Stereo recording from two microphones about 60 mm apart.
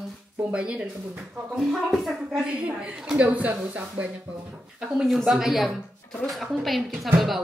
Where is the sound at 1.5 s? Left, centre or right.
Centre.